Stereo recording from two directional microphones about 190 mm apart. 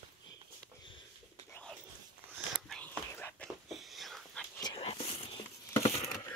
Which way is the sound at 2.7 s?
5° left (ahead or behind).